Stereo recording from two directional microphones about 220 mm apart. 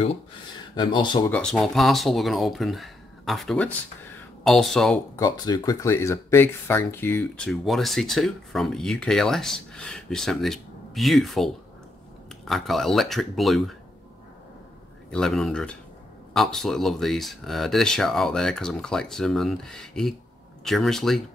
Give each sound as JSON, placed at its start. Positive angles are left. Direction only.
{"t": 0.7, "sound": "speech", "side_deg": 20}
{"t": 1.3, "sound": "speech", "side_deg": 0}
{"t": 5.1, "sound": "speech", "side_deg": 15}
{"t": 15.0, "sound": "speech", "side_deg": 0}